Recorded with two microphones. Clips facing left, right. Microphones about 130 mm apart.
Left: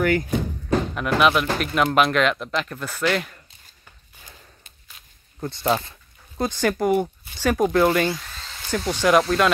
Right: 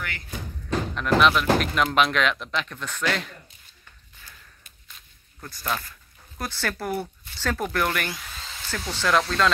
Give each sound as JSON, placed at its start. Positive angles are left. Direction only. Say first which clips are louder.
{"t": 0.0, "sound": "speech", "louder": "left 16 dB", "side_deg": 45}
{"t": 0.9, "sound": "speech", "louder": "right 1 dB", "side_deg": 5}
{"t": 4.2, "sound": "snort", "louder": "left 3 dB", "side_deg": 25}
{"t": 5.4, "sound": "speech", "louder": "left 8 dB", "side_deg": 25}